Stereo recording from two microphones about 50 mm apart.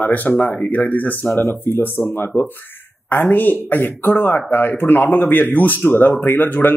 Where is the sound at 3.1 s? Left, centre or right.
Left.